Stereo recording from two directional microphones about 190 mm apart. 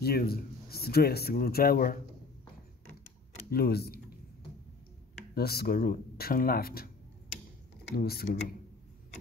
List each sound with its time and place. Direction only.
0.0 s a man's voice: 55° left (ahead or behind)
3.4 s speech: 55° left (ahead or behind)
5.3 s a man's voice: 55° left (ahead or behind)
7.9 s a man's voice: 55° left (ahead or behind)